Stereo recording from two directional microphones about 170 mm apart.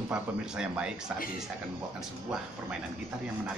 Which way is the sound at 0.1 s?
5° right (ahead or behind).